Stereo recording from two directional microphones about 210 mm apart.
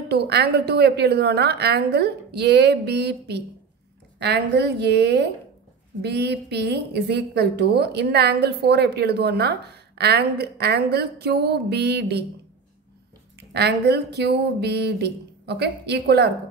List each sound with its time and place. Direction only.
0.1 s a woman's voice: 50° right (ahead or behind)
13.4 s a woman's voice: 50° right (ahead or behind)